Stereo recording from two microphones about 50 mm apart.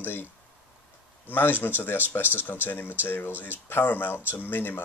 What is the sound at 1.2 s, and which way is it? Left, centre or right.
Speech, left.